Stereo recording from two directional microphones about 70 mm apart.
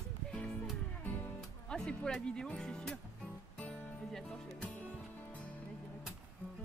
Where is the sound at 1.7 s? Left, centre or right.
Centre.